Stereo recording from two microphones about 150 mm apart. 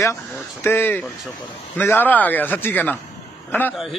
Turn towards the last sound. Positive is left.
turn(degrees=15)  # may be behind; listen again after turning